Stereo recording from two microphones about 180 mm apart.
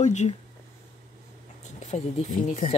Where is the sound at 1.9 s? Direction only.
40° left (ahead or behind).